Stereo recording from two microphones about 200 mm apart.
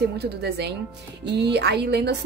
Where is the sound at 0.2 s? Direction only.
55° right (ahead or behind).